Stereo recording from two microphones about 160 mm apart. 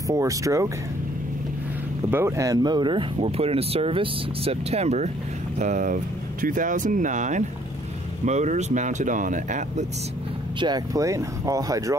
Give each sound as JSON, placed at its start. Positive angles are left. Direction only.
{"t": 0.1, "sound": "speech", "side_deg": -20}
{"t": 2.0, "sound": "speech", "side_deg": -15}
{"t": 10.6, "sound": "speech", "side_deg": -25}